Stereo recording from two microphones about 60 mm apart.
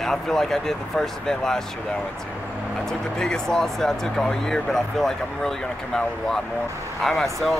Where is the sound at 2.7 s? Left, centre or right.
Centre.